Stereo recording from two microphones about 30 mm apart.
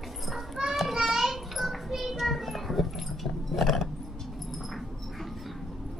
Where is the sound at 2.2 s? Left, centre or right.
Centre.